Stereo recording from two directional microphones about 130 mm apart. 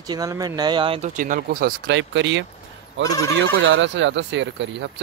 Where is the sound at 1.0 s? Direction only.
85° right.